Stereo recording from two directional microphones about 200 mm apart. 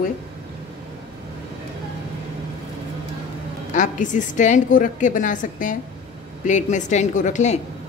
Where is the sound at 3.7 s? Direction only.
40° left (ahead or behind).